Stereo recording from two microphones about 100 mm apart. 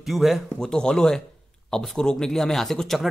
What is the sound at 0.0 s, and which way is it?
A man's voice, centre (ahead or behind).